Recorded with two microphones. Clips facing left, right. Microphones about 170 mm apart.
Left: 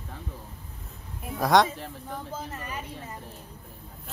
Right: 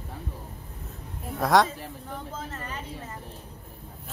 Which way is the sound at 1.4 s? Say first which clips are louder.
Even; centre (ahead or behind).